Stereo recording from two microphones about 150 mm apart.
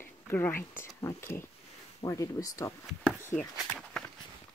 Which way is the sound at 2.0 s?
25° left (ahead or behind).